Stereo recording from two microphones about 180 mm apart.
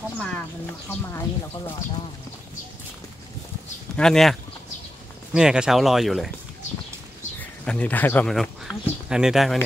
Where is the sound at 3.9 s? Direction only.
5° left (ahead or behind).